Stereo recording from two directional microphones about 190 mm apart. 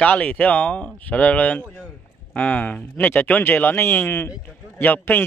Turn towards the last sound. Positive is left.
turn(degrees=10)  # may be behind; listen again after turning